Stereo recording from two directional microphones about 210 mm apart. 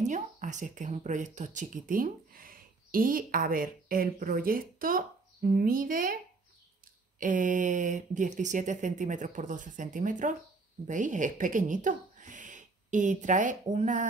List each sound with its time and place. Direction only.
0.0 s speech: 35° right (ahead or behind)
7.2 s speech: 40° right (ahead or behind)